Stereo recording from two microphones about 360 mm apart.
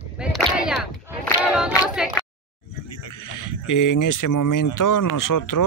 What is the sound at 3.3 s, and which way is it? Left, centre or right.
Speech, left.